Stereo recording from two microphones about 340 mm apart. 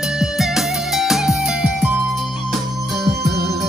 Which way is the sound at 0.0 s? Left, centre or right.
Centre.